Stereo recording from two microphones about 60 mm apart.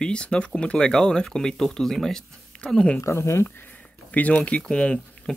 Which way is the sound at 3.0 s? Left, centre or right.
Left.